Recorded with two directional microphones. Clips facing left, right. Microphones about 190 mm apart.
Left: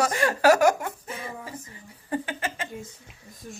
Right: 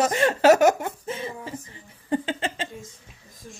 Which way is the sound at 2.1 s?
25° right (ahead or behind).